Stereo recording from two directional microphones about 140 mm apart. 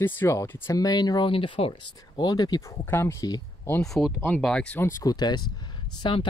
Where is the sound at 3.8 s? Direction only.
5° left (ahead or behind).